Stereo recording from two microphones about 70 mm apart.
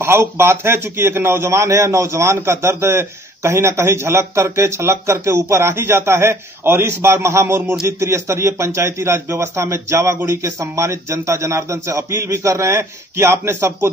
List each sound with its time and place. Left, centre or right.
0.0 s a man's voice: right